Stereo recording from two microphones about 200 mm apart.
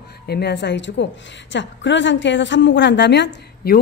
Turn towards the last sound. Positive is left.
turn(degrees=60)  # may be behind; listen again after turning